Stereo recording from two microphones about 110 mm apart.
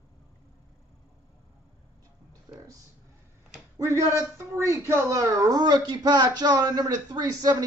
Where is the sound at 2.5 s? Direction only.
40° right (ahead or behind).